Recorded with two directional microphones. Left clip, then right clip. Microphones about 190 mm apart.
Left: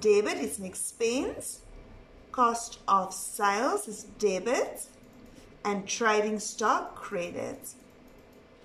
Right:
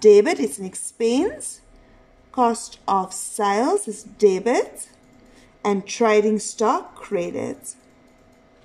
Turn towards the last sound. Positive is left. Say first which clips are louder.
# right 9 dB
turn(degrees=-50)  # may be behind; listen again after turning